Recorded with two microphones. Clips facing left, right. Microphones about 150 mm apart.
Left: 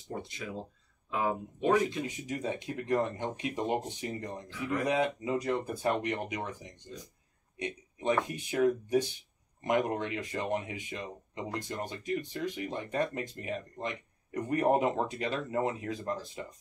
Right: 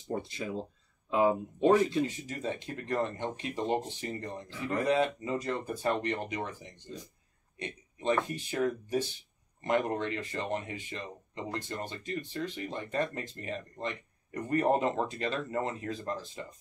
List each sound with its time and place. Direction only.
0.1 s speech: 30° right (ahead or behind)
2.0 s speech: 10° left (ahead or behind)